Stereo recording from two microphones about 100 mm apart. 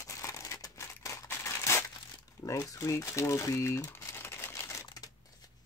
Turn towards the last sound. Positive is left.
turn(degrees=25)  # may be behind; listen again after turning